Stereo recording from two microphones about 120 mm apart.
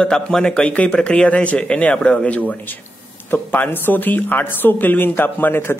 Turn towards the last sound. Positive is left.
turn(degrees=20)  # may be behind; listen again after turning